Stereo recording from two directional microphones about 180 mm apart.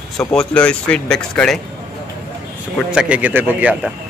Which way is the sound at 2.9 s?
10° right (ahead or behind).